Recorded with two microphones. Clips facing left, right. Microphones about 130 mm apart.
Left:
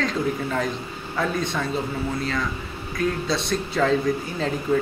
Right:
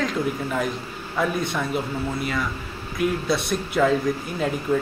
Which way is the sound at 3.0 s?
5° right (ahead or behind).